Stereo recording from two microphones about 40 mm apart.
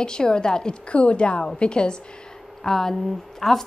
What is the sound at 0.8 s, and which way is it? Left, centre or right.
A woman's voice, left.